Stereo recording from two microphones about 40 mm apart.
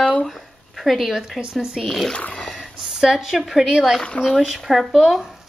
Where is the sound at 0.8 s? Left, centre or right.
Centre.